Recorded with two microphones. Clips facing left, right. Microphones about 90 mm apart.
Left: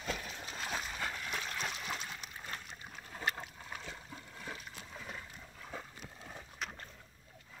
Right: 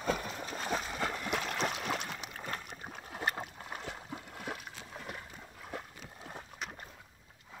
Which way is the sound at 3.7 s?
65° right (ahead or behind).